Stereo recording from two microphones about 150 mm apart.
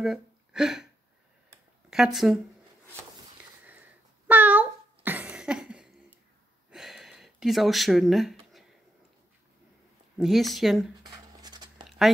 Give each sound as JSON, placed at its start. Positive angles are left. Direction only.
{"t": 0.0, "sound": "speech", "side_deg": -5}
{"t": 1.9, "sound": "speech", "side_deg": 0}
{"t": 4.3, "sound": "a sound", "side_deg": -10}
{"t": 10.1, "sound": "speech", "side_deg": 0}
{"t": 11.1, "sound": "writing", "side_deg": -25}